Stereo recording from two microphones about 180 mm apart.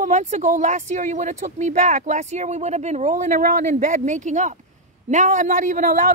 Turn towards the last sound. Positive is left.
turn(degrees=-45)  # may be behind; listen again after turning